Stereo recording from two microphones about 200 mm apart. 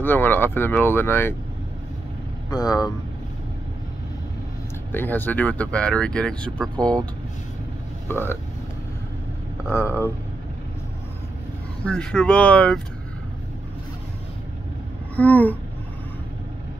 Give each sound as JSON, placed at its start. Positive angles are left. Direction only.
{"t": 0.0, "sound": "speech", "side_deg": 10}
{"t": 2.5, "sound": "speech", "side_deg": 20}
{"t": 4.9, "sound": "speech", "side_deg": 10}
{"t": 8.1, "sound": "speech", "side_deg": 10}
{"t": 9.7, "sound": "speech", "side_deg": 10}
{"t": 11.8, "sound": "speech", "side_deg": 5}
{"t": 15.1, "sound": "speech", "side_deg": 10}